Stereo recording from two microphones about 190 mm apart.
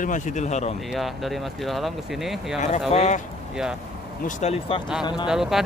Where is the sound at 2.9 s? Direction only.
35° left (ahead or behind).